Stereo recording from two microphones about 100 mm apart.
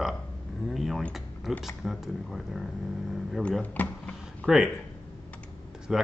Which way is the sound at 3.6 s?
15° left (ahead or behind).